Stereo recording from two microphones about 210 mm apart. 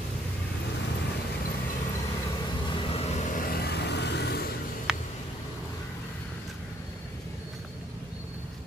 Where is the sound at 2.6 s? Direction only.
25° left (ahead or behind); by 4.5 s 50° left (ahead or behind).